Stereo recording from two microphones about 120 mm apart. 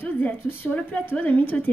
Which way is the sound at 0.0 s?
15° left (ahead or behind).